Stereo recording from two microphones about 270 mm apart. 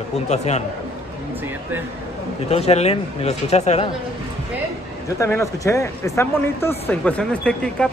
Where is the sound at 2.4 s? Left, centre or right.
Left.